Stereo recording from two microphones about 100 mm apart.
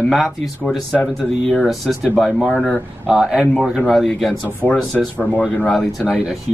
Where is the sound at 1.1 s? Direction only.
Centre (ahead or behind).